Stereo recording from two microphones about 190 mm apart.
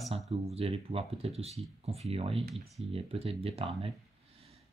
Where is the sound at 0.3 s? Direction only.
30° right (ahead or behind).